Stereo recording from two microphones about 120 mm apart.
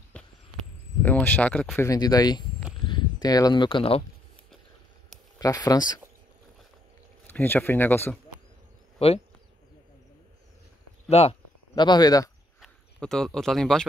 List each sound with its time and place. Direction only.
1.0 s speech: 15° left (ahead or behind)
1.8 s speech: 30° left (ahead or behind)
2.9 s a sound: 35° left (ahead or behind)
3.6 s speech: 50° left (ahead or behind)
5.4 s speech: 30° left (ahead or behind)
7.2 s speech: 15° left (ahead or behind)
11.1 s speech: 60° left (ahead or behind)
11.7 s speech: 35° left (ahead or behind)
12.5 s speech: centre (ahead or behind)